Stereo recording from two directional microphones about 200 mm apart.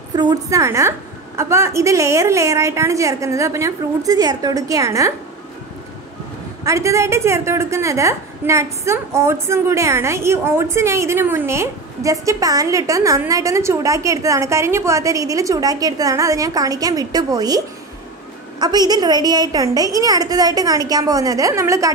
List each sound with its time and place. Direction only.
0.1 s a woman's voice: 20° right (ahead or behind)
6.6 s a woman's voice: 15° right (ahead or behind)
18.6 s a woman's voice: 20° right (ahead or behind)